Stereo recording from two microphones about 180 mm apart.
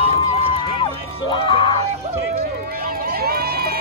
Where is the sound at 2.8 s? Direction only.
55° right (ahead or behind).